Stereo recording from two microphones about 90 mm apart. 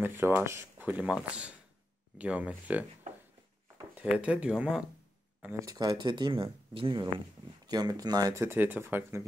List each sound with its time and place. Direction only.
0.0 s speech: 25° right (ahead or behind)
2.1 s speech: 15° right (ahead or behind)
4.0 s speech: 10° right (ahead or behind)
5.5 s speech: 40° right (ahead or behind); by 7.0 s 90° right
7.6 s speech: 45° right (ahead or behind)
8.4 s speech: 25° right (ahead or behind)